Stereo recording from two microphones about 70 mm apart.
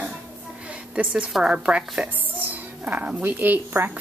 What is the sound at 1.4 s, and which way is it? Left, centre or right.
A woman's voice, centre.